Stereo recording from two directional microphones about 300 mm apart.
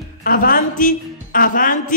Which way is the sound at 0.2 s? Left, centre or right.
Left.